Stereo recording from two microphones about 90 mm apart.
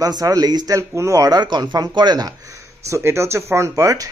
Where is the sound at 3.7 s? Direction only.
40° right (ahead or behind).